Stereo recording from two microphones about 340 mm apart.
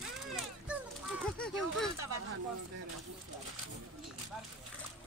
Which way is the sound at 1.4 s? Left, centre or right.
Centre.